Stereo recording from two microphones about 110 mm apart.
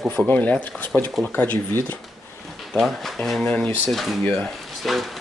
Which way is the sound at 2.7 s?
Centre (ahead or behind).